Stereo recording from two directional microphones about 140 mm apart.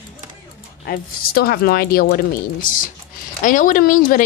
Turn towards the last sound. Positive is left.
turn(degrees=75)  # may be behind; listen again after turning